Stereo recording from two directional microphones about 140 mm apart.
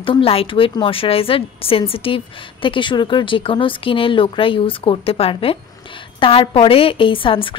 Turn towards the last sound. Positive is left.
turn(degrees=40)  # may be behind; listen again after turning